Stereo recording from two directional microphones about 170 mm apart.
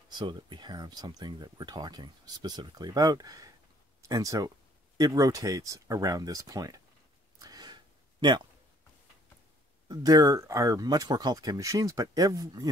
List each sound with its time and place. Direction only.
0.1 s speech: 25° right (ahead or behind)
7.3 s gasp: 20° right (ahead or behind)
9.8 s speech: 20° right (ahead or behind)